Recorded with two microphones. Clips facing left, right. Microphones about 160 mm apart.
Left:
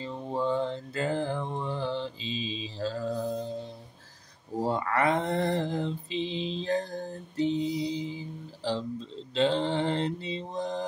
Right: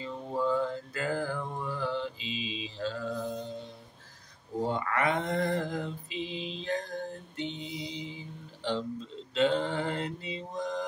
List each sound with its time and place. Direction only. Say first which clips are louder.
0.0 s mantra: left 1 dB; 30° left (ahead or behind)
4.6 s mantra: left 3 dB; 35° left (ahead or behind)
8.6 s a sound: left 1 dB; 35° left (ahead or behind)
9.3 s mantra: left 1 dB; 30° left (ahead or behind)